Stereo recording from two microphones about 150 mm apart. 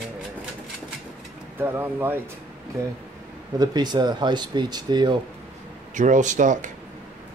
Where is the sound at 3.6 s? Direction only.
30° right (ahead or behind).